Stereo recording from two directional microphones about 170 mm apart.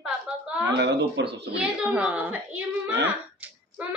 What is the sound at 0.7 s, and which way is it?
Speech, 90° right.